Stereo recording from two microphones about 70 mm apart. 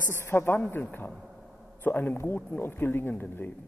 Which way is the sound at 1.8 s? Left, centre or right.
Left.